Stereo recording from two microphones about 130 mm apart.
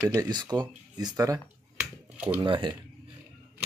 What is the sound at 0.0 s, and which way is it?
Speech, 20° right (ahead or behind).